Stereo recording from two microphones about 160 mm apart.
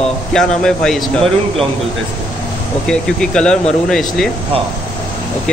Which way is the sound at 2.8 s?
5° left (ahead or behind).